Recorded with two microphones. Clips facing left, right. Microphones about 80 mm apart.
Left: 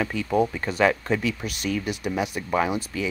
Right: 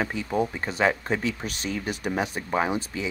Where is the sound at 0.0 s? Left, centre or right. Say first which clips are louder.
Left 3 dB; right.